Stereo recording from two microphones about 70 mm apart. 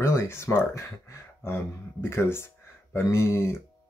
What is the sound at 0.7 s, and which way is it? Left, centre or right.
Speech, left.